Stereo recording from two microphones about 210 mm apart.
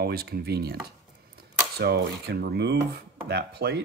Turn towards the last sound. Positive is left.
turn(degrees=-50)  # may be behind; listen again after turning